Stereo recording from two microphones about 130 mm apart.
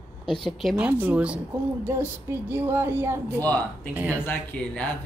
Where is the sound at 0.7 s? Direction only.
10° right (ahead or behind).